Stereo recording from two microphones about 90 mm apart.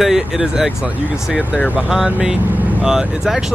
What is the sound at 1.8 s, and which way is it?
Speech, 5° right (ahead or behind).